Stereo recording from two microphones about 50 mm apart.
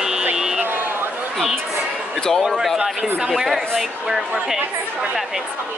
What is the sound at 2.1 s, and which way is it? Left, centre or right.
Speech, centre.